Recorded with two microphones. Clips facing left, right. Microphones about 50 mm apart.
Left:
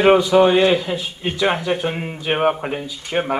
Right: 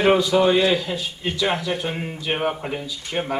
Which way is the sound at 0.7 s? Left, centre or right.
Centre.